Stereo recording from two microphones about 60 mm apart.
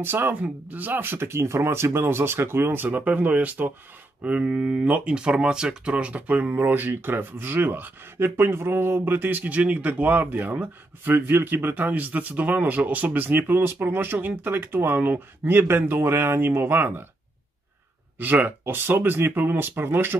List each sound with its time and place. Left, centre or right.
0.0 s speech: right
18.2 s speech: right